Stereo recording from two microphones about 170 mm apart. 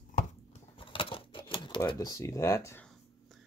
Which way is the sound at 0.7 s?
30° left (ahead or behind).